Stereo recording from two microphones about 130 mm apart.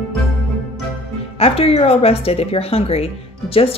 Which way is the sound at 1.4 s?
50° left (ahead or behind).